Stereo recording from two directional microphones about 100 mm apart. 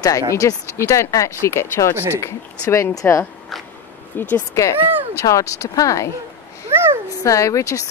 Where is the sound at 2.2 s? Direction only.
30° left (ahead or behind).